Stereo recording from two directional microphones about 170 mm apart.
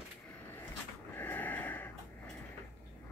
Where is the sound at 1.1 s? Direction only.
10° left (ahead or behind).